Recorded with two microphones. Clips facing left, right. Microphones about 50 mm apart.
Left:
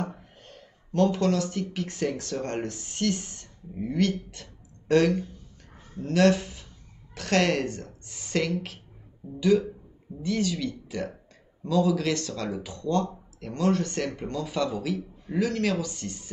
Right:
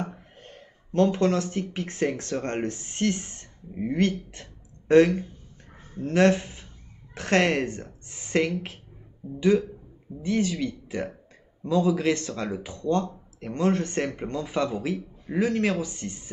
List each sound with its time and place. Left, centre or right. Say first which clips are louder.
0.0 s speech: even; right
9.2 s speech: right 3 dB; centre
10.2 s speech: right 2 dB; right